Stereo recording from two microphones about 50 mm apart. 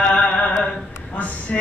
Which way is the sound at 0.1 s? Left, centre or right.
Left.